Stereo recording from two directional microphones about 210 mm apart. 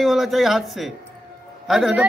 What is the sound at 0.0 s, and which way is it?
Speech, centre (ahead or behind).